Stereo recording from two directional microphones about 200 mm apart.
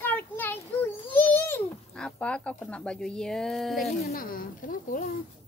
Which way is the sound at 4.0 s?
45° left (ahead or behind).